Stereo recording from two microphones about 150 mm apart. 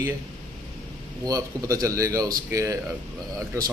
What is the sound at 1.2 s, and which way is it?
A man's voice, 25° right (ahead or behind).